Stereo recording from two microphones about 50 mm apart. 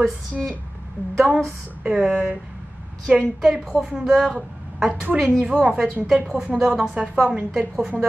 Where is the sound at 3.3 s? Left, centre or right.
Centre.